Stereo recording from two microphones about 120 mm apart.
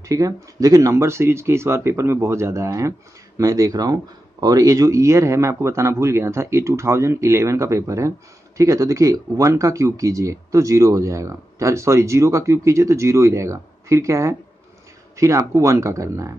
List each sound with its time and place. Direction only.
0.1 s speech: 30° right (ahead or behind)